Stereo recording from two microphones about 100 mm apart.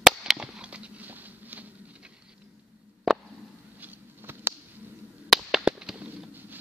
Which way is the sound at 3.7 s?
20° right (ahead or behind).